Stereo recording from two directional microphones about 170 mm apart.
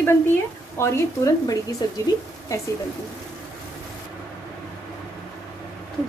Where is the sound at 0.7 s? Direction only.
15° left (ahead or behind).